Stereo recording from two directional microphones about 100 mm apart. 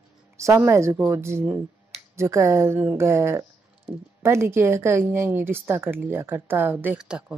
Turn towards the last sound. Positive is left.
turn(degrees=-5)  # may be behind; listen again after turning